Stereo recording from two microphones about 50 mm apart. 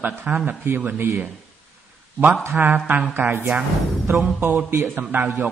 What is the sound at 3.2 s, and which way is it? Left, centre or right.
Speech, right.